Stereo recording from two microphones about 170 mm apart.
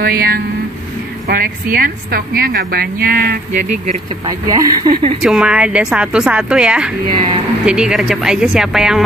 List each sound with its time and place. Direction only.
0.0 s a woman's voice: 60° right (ahead or behind)
4.3 s speech: 25° right (ahead or behind)
5.2 s a woman's voice: 5° right (ahead or behind)